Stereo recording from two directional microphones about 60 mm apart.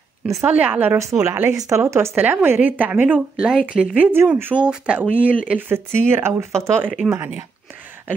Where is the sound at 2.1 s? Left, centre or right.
Right.